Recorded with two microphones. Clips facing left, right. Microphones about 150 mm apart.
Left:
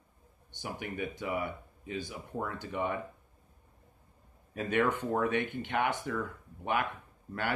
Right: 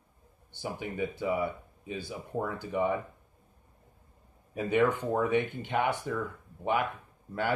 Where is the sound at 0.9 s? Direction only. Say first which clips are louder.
Right 5 dB; 15° right (ahead or behind).